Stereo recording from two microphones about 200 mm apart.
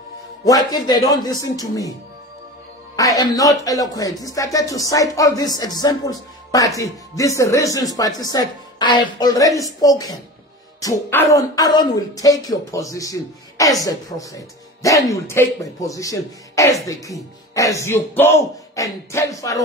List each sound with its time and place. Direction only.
0.5 s a woman's voice: 20° left (ahead or behind)
3.0 s a woman's voice: 20° left (ahead or behind)